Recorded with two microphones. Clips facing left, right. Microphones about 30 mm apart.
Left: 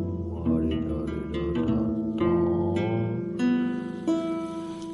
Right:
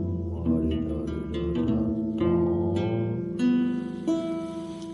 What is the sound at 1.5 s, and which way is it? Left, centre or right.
Music, left.